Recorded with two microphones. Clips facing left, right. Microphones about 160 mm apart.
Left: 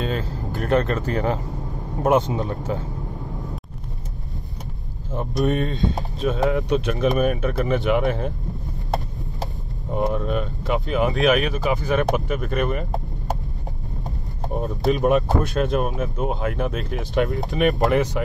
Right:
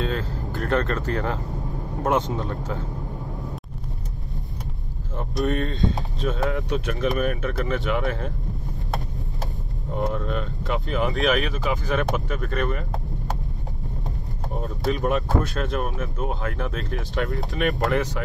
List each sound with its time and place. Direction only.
0.0 s speech: 15° left (ahead or behind)
5.1 s speech: 15° left (ahead or behind)
9.9 s speech: 15° left (ahead or behind)
14.6 s speech: 20° left (ahead or behind)